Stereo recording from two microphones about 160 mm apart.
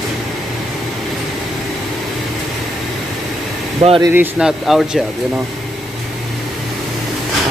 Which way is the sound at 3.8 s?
35° right (ahead or behind).